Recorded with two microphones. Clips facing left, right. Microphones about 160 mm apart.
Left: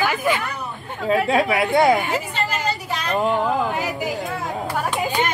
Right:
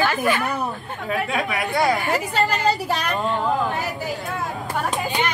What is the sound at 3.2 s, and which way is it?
Speech, 20° left (ahead or behind).